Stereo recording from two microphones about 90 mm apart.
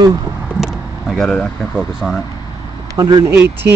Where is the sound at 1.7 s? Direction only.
5° right (ahead or behind).